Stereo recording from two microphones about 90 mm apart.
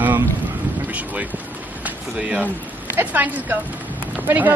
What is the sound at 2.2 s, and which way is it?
A woman's voice, 15° right (ahead or behind).